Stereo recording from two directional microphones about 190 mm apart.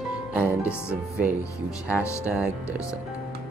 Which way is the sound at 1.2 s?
10° right (ahead or behind).